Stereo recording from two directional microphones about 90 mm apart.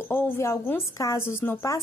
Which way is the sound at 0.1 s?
30° left (ahead or behind).